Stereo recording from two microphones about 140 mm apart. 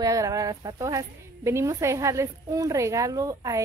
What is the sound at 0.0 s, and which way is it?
A woman's voice, 25° right (ahead or behind).